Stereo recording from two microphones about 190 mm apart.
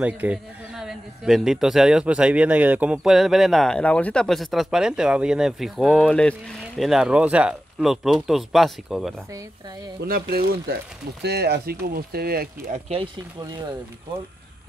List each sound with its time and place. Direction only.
0.0 s a man's voice: 5° right (ahead or behind)
10.0 s speech: 50° right (ahead or behind)